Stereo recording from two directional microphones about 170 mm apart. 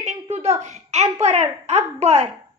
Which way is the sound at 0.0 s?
40° right (ahead or behind).